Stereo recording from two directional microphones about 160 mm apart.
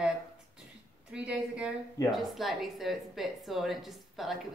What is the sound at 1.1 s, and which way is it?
A woman's voice, 5° right (ahead or behind).